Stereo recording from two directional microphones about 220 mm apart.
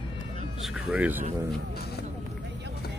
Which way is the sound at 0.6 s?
5° right (ahead or behind).